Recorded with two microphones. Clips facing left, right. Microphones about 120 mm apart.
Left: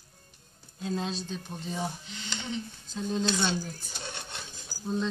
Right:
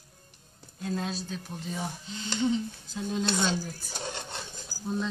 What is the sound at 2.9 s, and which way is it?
Speech, 5° right (ahead or behind).